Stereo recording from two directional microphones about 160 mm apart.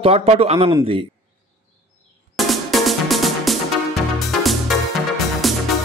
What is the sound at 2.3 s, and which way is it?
Music, centre (ahead or behind).